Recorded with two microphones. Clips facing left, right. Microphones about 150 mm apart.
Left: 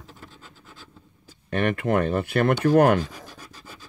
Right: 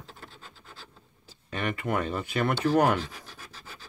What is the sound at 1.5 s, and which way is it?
Speech, 65° left (ahead or behind).